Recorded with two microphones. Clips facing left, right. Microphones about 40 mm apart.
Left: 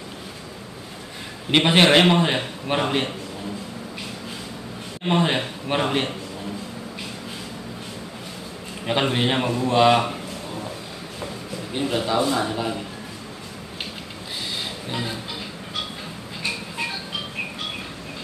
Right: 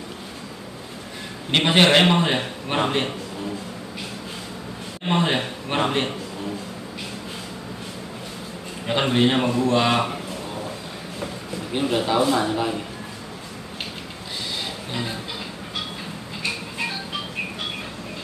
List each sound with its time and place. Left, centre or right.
1.5 s a man's voice: centre
5.0 s a man's voice: centre
8.8 s a man's voice: centre
10.0 s a sound: centre
11.7 s speech: centre
14.9 s music: centre